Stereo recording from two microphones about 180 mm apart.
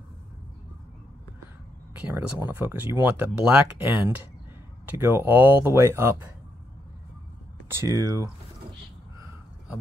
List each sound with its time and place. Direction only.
2.0 s speech: 10° right (ahead or behind)
7.6 s speech: 15° right (ahead or behind)